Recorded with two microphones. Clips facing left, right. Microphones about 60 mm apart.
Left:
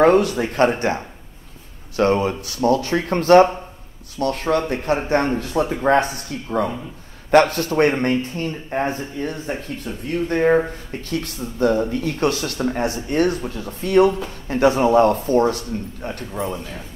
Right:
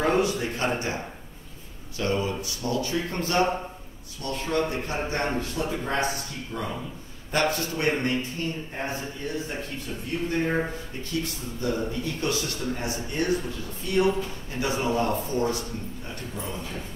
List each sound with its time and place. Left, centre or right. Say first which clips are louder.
0.0 s speech: left 9 dB; left
2.0 s speech: left 9 dB; left
7.2 s speech: left 11 dB; left
10.0 s speech: left 9 dB; left
11.6 s speech: left 10 dB; left